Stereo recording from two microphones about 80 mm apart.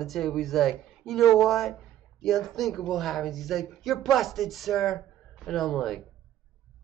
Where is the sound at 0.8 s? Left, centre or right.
Centre.